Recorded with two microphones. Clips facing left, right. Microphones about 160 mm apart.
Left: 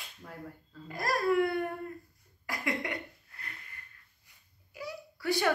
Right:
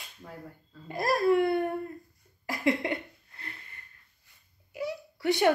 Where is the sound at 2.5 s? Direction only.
25° right (ahead or behind).